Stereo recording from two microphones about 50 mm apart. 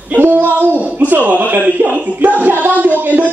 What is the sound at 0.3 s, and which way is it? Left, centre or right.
A man's voice, right.